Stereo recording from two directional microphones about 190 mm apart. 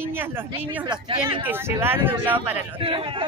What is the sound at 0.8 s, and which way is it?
Speech, 25° right (ahead or behind).